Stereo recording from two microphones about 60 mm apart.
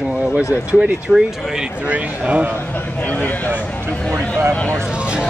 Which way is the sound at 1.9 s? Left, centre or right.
Right.